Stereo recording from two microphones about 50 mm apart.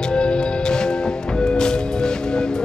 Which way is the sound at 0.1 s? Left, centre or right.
Centre.